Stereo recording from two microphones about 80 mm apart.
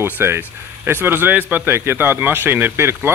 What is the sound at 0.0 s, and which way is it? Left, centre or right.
Speech, right.